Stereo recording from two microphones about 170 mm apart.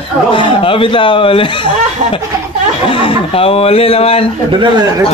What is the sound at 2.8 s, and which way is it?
Speech, 30° left (ahead or behind).